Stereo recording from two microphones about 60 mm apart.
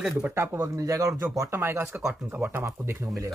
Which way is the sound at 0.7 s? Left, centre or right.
Right.